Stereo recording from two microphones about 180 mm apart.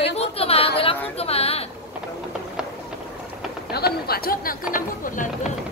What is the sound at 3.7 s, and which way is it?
Speech, 60° left (ahead or behind).